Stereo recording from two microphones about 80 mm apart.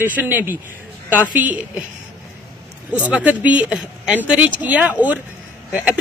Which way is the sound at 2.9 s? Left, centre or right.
Centre.